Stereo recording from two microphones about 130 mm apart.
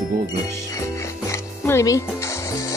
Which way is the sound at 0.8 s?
20° left (ahead or behind).